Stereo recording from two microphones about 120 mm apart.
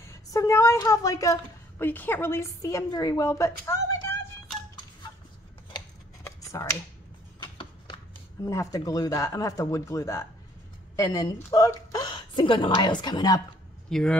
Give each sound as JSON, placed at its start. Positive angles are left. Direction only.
{"t": 0.0, "sound": "speech", "side_deg": 25}
{"t": 1.9, "sound": "a woman's voice", "side_deg": 15}
{"t": 6.4, "sound": "speech", "side_deg": 25}
{"t": 8.5, "sound": "a woman's voice", "side_deg": 30}
{"t": 13.8, "sound": "speech", "side_deg": 5}